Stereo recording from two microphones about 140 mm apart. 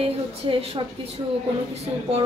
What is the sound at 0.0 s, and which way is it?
Speech, 45° right (ahead or behind).